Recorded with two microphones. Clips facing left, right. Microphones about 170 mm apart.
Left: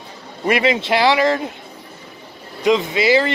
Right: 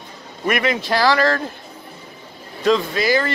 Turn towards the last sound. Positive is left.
turn(degrees=25)  # may be behind; listen again after turning